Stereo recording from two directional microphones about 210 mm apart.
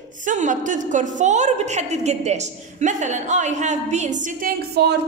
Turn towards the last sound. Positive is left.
turn(degrees=-50)  # may be behind; listen again after turning